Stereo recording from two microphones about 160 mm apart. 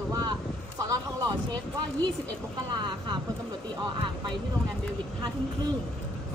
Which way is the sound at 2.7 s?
30° right (ahead or behind).